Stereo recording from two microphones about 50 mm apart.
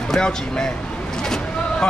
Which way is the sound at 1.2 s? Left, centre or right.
Centre.